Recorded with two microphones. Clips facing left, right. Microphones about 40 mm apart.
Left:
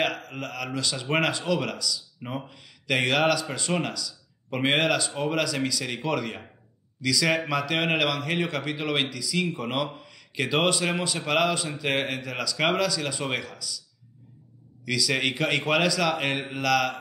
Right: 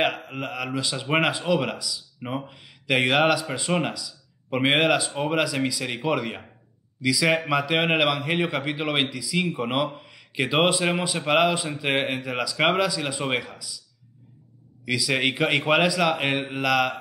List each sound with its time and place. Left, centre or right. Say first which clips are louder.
0.0 s speech: right 3 dB; centre
14.9 s speech: right 2 dB; centre